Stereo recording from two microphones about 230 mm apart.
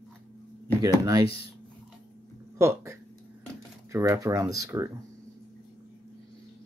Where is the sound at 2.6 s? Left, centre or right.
Centre.